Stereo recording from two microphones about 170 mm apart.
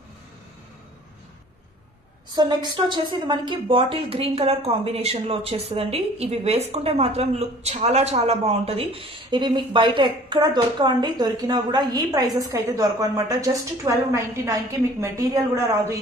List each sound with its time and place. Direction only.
2.3 s a woman's voice: 25° right (ahead or behind)